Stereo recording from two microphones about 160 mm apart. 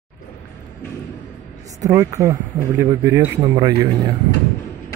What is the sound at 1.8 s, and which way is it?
Speech, 20° right (ahead or behind).